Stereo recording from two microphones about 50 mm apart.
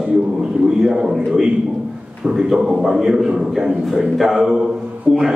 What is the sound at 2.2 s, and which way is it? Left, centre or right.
A man's voice, centre.